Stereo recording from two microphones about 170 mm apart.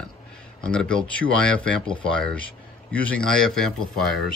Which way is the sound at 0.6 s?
5° left (ahead or behind).